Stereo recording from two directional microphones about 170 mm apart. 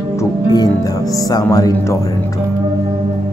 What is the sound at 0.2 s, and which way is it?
Music, 20° left (ahead or behind).